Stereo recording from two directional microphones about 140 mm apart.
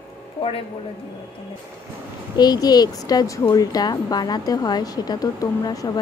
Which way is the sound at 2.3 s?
30° left (ahead or behind).